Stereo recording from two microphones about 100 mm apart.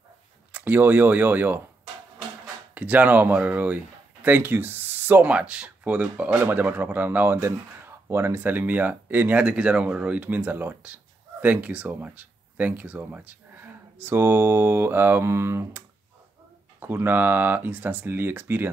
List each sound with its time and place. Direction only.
0.5 s speech: 15° right (ahead or behind)
2.7 s speech: 15° right (ahead or behind)
16.8 s speech: 20° right (ahead or behind)